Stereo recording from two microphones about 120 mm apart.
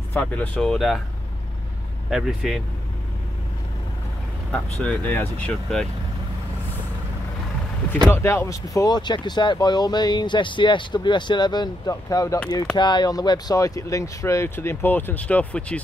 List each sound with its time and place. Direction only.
0.1 s speech: 15° left (ahead or behind)
2.0 s speech: 5° right (ahead or behind)
4.5 s speech: 10° left (ahead or behind)
8.1 s speech: 20° left (ahead or behind)
12.7 s speech: 40° left (ahead or behind); by 15.8 s 10° left (ahead or behind)